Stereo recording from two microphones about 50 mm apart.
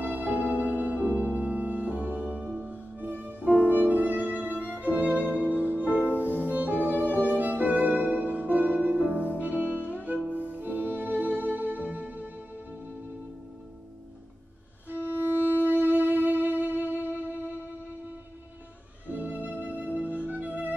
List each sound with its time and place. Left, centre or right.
0.0 s music: right
2.6 s music: right
5.2 s music: left
5.5 s music: right
5.9 s music: left
6.2 s music: right
15.0 s music: right
19.0 s music: right
19.6 s flute: right
20.0 s music: right